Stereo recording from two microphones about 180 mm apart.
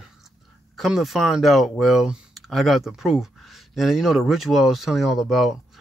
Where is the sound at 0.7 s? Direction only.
Centre (ahead or behind).